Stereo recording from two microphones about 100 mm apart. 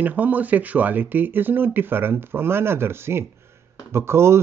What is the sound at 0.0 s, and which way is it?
Speech, 15° right (ahead or behind).